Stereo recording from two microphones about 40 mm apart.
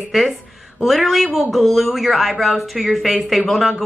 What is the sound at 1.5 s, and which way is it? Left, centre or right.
A woman's voice, centre.